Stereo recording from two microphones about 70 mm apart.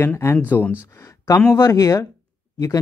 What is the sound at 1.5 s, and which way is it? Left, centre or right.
Speech, left.